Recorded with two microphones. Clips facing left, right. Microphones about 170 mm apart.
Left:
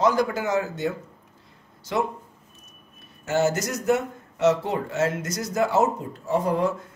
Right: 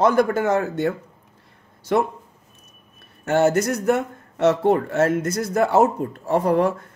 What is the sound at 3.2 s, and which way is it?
A man's voice, 55° right (ahead or behind).